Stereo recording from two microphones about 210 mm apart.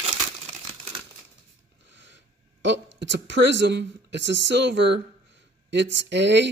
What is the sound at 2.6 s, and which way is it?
A woman's voice, 55° right (ahead or behind).